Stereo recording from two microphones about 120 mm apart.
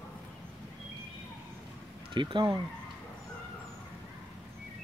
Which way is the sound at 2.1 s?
40° right (ahead or behind).